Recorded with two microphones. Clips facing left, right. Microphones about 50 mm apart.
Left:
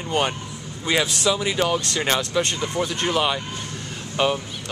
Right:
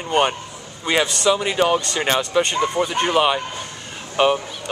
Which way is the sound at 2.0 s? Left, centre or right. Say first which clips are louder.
Right 4 dB; centre.